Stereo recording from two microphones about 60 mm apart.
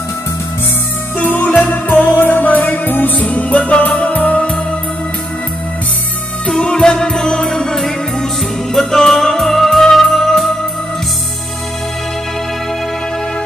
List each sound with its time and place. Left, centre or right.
1.1 s music: left
6.4 s music: centre